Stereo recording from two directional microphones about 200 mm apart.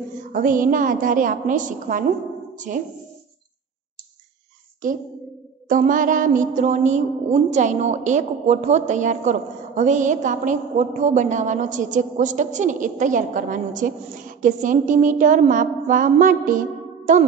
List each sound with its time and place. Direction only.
0.3 s speech: 40° right (ahead or behind)
4.8 s speech: 40° right (ahead or behind)